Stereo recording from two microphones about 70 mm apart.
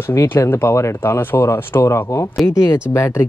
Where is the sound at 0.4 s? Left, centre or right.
Left.